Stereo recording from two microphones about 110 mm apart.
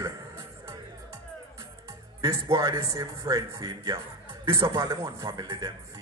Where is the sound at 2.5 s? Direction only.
30° right (ahead or behind).